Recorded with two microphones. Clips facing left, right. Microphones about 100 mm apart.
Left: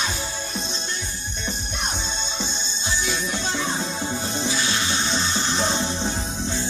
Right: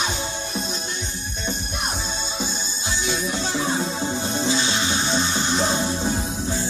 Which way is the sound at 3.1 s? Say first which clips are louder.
Right 4 dB; 25° right (ahead or behind).